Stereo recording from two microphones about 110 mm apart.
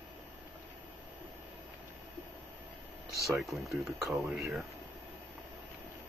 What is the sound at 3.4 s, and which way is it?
Speech, centre (ahead or behind).